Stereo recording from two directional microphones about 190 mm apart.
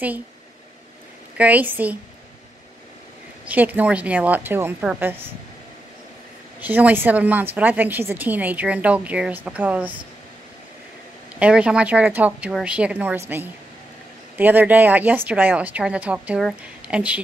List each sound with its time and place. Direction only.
1.4 s a woman's voice: 10° right (ahead or behind)
3.4 s a woman's voice: 10° right (ahead or behind)
6.6 s a woman's voice: 10° right (ahead or behind)
11.3 s a woman's voice: 5° right (ahead or behind)
14.3 s a woman's voice: 10° right (ahead or behind)